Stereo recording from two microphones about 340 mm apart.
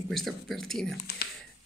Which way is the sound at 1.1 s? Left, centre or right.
Left.